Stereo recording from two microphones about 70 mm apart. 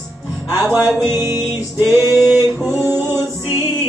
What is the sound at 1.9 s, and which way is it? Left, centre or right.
Singing, left.